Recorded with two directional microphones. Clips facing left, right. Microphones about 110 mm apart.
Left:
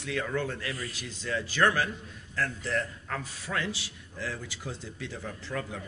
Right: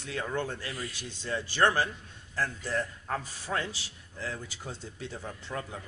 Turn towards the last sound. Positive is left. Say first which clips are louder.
# left 2 dB
turn(degrees=-25)  # may be behind; listen again after turning